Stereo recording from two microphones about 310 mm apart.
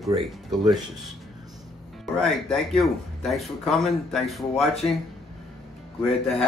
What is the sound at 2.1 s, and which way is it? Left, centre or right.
Speech, centre.